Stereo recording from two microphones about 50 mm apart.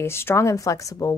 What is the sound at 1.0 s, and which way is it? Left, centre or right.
Speech, left.